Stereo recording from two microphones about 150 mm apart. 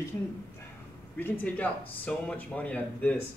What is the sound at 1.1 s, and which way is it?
Speech, 10° left (ahead or behind).